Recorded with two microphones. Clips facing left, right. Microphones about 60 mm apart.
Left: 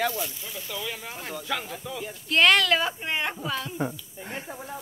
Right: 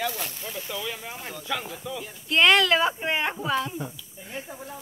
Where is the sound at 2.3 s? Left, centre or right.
Centre.